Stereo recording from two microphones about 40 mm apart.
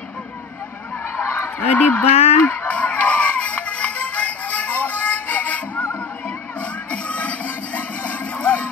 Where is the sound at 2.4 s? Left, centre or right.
Left.